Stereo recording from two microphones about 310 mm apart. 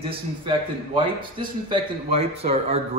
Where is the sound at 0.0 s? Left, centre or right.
Centre.